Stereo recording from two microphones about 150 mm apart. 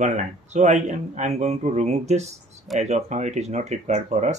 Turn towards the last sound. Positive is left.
turn(degrees=-55)  # may be behind; listen again after turning